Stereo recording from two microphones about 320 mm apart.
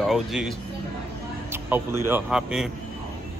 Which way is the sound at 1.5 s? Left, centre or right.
Centre.